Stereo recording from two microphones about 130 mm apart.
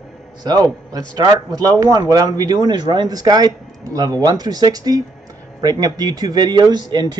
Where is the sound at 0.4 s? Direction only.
30° right (ahead or behind).